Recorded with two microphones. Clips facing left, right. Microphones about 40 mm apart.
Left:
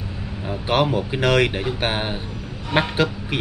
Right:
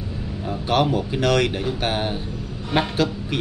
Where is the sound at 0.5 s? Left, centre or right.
Centre.